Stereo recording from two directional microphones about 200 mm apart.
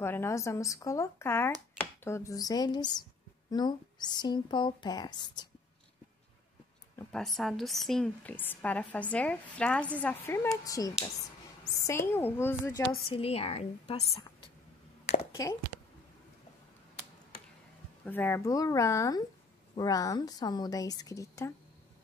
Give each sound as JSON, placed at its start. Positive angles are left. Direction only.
{"t": 0.0, "sound": "a woman's voice", "side_deg": 10}
{"t": 7.0, "sound": "a woman's voice", "side_deg": 5}
{"t": 13.1, "sound": "a woman's voice", "side_deg": 30}
{"t": 15.4, "sound": "a woman's voice", "side_deg": 15}
{"t": 18.0, "sound": "a woman's voice", "side_deg": 10}